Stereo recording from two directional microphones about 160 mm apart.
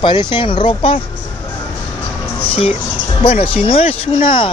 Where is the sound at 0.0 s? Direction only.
30° left (ahead or behind).